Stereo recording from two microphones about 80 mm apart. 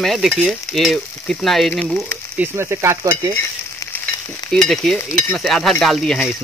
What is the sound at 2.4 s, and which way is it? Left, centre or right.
Speech, right.